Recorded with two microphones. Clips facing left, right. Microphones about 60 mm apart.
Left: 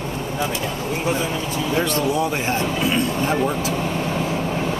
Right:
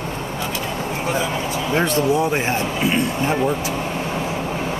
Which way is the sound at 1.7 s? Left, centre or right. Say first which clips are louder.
Right 3 dB; right.